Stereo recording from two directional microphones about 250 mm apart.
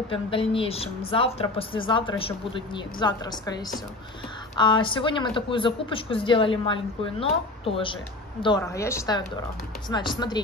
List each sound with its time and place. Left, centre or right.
0.1 s speech: left